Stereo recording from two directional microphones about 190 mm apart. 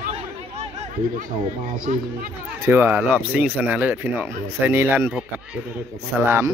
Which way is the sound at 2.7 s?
10° right (ahead or behind).